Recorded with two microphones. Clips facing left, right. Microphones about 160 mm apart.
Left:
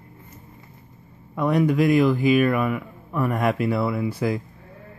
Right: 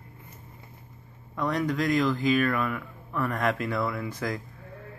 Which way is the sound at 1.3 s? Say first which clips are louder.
Left 7 dB; 10° left (ahead or behind).